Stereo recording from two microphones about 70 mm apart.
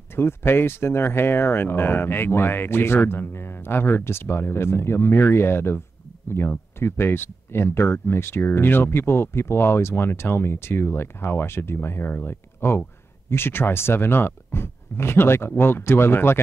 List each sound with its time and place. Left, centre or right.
0.1 s speech: left